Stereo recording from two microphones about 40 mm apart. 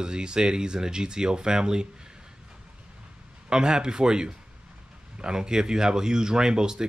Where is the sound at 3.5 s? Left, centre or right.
Centre.